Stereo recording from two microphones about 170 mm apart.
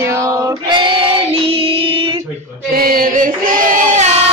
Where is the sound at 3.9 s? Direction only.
40° right (ahead or behind).